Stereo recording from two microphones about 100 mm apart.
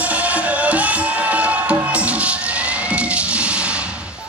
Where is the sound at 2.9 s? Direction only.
10° right (ahead or behind).